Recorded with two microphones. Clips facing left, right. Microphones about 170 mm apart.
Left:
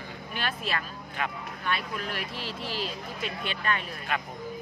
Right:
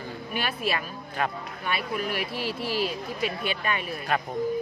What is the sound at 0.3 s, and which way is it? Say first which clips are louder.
Speech: right 3 dB; 10° right (ahead or behind).